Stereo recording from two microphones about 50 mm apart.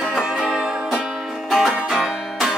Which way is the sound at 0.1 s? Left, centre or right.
Centre.